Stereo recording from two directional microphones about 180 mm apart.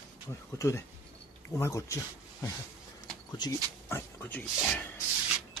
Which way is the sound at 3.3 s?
20° left (ahead or behind).